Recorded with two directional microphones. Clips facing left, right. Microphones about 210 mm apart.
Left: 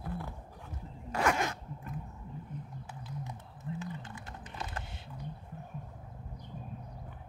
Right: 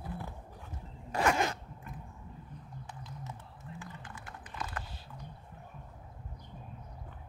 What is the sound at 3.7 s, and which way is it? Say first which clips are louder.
Typing: left 6 dB; 25° left (ahead or behind).